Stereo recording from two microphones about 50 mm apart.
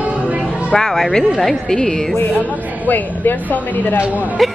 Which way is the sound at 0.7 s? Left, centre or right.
Centre.